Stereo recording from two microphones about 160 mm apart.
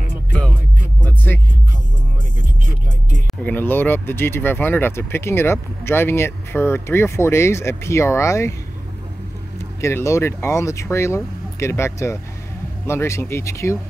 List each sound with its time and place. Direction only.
0.3 s music: 5° left (ahead or behind)
3.4 s speech: 10° left (ahead or behind)
9.8 s speech: 20° left (ahead or behind)